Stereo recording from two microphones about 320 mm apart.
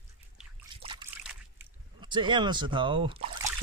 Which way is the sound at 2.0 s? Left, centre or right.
Centre.